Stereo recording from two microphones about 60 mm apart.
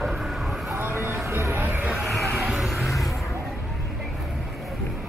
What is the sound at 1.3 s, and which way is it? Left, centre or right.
Music, right.